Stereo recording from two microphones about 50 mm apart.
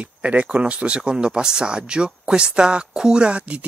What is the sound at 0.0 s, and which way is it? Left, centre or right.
Speech, right.